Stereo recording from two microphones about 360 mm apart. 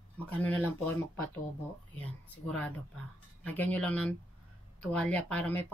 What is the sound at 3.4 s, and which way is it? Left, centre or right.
Speech, centre.